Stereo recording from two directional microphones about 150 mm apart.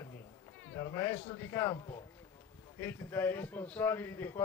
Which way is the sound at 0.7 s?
20° left (ahead or behind).